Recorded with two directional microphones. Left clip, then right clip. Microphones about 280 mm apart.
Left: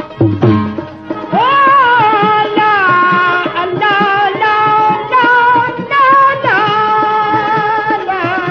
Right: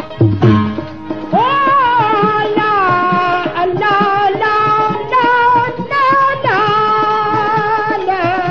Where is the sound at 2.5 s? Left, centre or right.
Centre.